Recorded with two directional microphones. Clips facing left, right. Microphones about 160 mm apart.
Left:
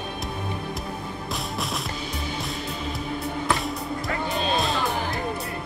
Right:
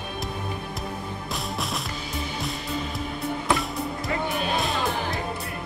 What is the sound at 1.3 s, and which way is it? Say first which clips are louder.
Music: even; centre (ahead or behind).